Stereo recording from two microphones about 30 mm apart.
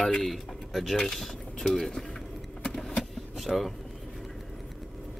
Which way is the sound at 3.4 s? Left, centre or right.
Centre.